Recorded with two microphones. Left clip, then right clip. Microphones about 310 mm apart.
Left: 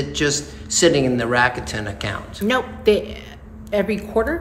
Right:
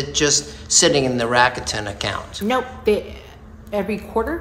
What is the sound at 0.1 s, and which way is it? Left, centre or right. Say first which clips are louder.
A woman's voice: right 5 dB; centre.